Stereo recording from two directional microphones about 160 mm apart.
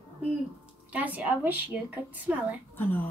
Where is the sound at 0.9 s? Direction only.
10° right (ahead or behind).